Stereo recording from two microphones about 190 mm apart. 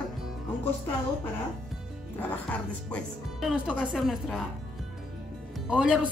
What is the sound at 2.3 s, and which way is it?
Speech, 5° left (ahead or behind).